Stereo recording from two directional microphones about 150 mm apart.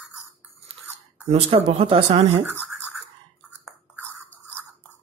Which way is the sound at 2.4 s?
10° right (ahead or behind).